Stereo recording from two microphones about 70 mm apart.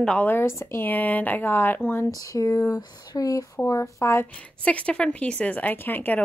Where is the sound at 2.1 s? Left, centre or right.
Left.